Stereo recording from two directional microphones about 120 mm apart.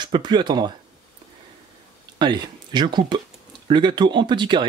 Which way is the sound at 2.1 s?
40° right (ahead or behind).